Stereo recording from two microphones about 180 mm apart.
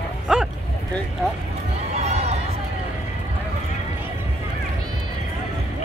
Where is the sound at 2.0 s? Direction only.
35° right (ahead or behind).